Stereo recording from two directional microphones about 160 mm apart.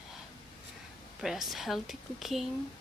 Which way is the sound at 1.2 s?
Centre (ahead or behind).